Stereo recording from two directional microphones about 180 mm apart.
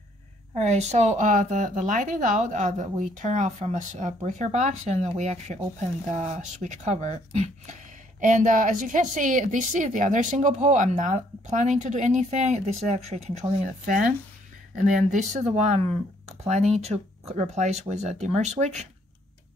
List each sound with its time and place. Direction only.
0.6 s a woman's voice: 40° right (ahead or behind)